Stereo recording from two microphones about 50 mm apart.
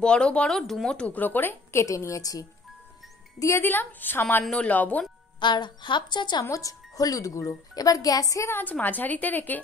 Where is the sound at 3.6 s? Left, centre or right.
Left.